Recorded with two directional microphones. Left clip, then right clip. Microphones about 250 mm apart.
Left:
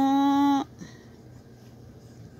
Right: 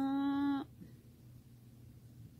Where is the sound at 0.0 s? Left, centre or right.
Centre.